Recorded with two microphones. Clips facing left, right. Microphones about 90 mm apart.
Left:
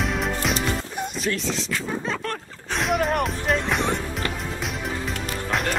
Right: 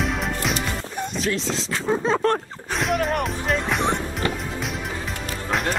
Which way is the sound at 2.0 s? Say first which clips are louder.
Right 8 dB; 35° right (ahead or behind).